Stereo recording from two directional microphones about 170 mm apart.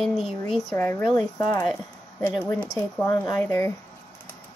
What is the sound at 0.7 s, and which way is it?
Speech, 15° left (ahead or behind).